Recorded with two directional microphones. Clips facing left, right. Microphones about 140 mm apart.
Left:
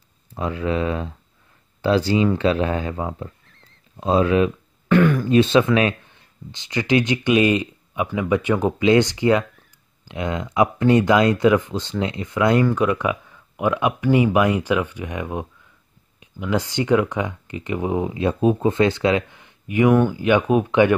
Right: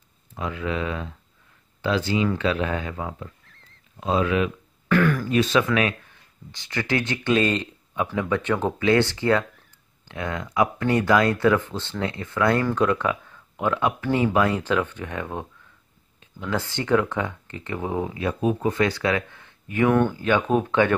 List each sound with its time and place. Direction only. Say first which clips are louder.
0.3 s speech: left 5 dB; 35° left (ahead or behind); by 20.9 s 15° left (ahead or behind)